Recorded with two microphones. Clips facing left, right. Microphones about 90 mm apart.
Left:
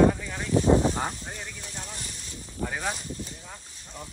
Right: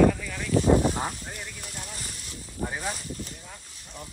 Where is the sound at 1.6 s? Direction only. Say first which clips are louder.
Even; 30° left (ahead or behind).